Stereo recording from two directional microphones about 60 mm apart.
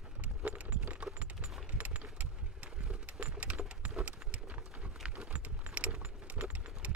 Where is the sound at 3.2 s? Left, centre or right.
Right.